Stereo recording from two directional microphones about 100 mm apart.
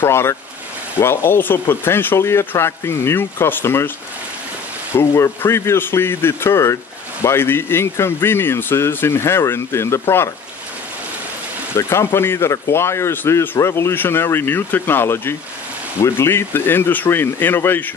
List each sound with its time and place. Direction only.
0.0 s speech: 25° left (ahead or behind)
4.9 s speech: 25° left (ahead or behind)
11.7 s speech: 25° left (ahead or behind)